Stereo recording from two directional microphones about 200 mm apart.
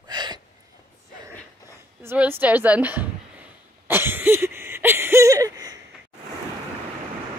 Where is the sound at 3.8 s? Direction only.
10° right (ahead or behind).